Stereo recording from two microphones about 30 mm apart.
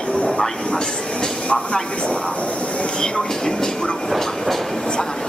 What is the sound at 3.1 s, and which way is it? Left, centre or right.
Train, centre.